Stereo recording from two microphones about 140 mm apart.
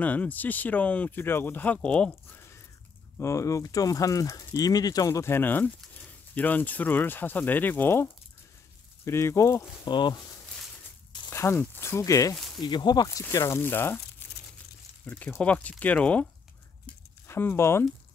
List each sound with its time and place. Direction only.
0.0 s speech: 10° left (ahead or behind)
3.2 s speech: 20° left (ahead or behind)
9.8 s speech: 35° left (ahead or behind)
11.2 s speech: 20° left (ahead or behind)
16.8 s a sound: 15° left (ahead or behind)